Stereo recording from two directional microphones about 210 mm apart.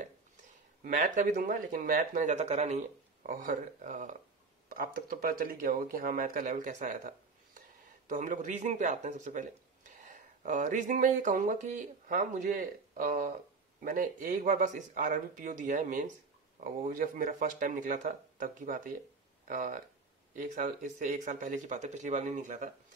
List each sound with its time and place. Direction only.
0.8 s speech: 40° right (ahead or behind)